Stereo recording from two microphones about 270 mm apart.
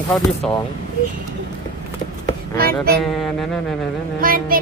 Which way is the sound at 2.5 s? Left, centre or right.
Right.